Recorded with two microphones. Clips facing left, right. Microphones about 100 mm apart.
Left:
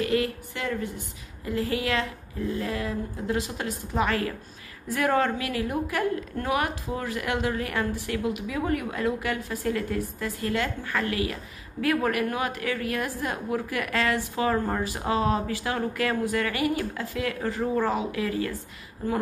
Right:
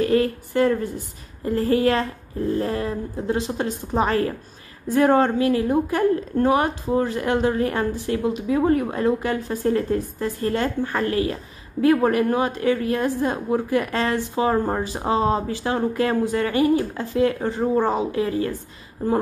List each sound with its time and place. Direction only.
0.0 s a woman's voice: 35° right (ahead or behind)